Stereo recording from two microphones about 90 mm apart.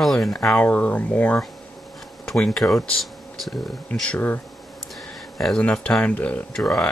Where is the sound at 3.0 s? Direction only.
Centre (ahead or behind).